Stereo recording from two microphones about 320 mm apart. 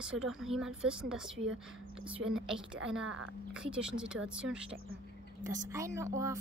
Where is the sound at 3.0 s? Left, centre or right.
Right.